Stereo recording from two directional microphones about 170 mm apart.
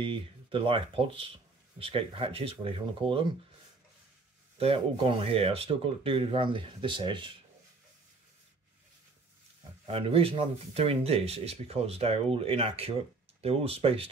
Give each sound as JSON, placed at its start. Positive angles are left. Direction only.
{"t": 0.0, "sound": "speech", "side_deg": -30}
{"t": 4.6, "sound": "speech", "side_deg": -35}
{"t": 9.8, "sound": "speech", "side_deg": -35}